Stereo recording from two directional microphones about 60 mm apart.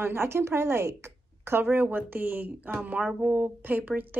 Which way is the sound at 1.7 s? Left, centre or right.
Right.